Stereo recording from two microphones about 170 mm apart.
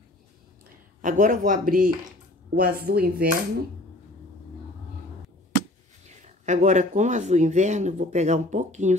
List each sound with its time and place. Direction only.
1.0 s speech: 50° right (ahead or behind)
2.5 s dishes: 60° right (ahead or behind)
6.0 s speech: 45° right (ahead or behind)